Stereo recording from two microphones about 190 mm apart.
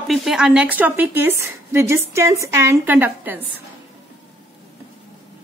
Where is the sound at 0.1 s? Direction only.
Centre (ahead or behind).